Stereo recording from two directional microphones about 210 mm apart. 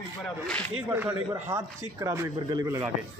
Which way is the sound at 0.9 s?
10° right (ahead or behind).